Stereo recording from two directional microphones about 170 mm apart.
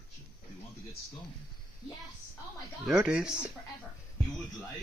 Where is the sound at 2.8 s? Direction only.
5° right (ahead or behind).